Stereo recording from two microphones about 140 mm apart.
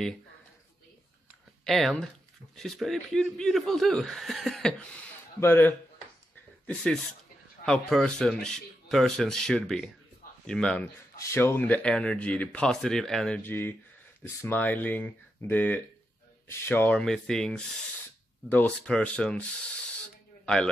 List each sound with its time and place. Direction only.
1.6 s speech: 5° left (ahead or behind)
5.4 s speech: 15° left (ahead or behind)
6.6 s speech: 5° left (ahead or behind)
11.1 s speech: 20° left (ahead or behind)
13.4 s speech: 15° left (ahead or behind)
17.0 s speech: 5° left (ahead or behind)